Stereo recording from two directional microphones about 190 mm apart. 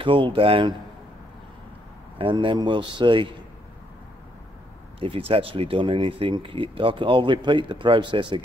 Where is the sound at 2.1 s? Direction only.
25° right (ahead or behind).